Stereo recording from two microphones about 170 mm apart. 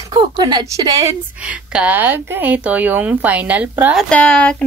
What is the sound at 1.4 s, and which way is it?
Speech, 10° right (ahead or behind).